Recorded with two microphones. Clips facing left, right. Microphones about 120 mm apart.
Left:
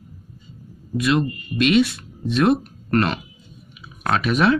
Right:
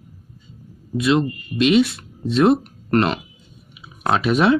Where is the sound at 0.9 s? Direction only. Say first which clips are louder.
Right 2 dB; 25° right (ahead or behind).